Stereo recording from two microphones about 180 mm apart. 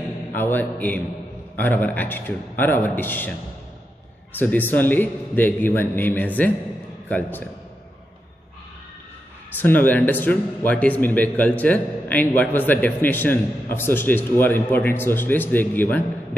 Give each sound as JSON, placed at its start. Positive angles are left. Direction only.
{"t": 0.4, "sound": "speech", "side_deg": 10}
{"t": 4.4, "sound": "speech", "side_deg": 10}
{"t": 9.6, "sound": "speech", "side_deg": 10}